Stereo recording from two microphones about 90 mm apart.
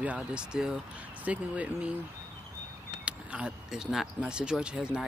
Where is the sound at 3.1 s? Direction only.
15° right (ahead or behind).